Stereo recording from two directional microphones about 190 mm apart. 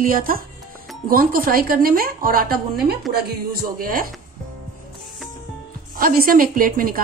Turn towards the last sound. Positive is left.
turn(degrees=-50)  # may be behind; listen again after turning